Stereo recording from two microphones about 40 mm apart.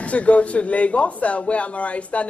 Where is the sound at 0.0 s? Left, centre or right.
Left.